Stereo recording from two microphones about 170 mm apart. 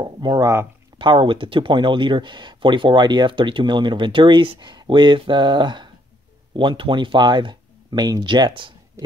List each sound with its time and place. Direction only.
0.0 s speech: 25° right (ahead or behind)